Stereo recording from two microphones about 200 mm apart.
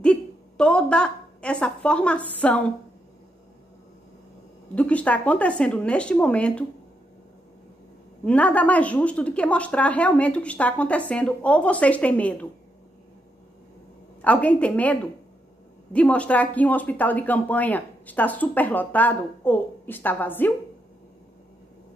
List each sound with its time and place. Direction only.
0.0 s a woman's voice: 5° left (ahead or behind)
4.7 s speech: 5° left (ahead or behind)
8.3 s speech: 5° left (ahead or behind)
14.2 s speech: 5° left (ahead or behind)